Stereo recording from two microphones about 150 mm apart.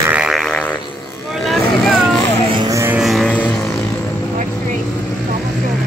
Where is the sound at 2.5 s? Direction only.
20° right (ahead or behind).